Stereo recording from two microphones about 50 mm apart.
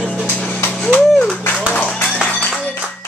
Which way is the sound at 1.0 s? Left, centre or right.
Centre.